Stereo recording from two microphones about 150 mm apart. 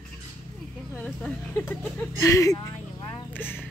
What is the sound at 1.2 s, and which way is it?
Speech, 15° left (ahead or behind).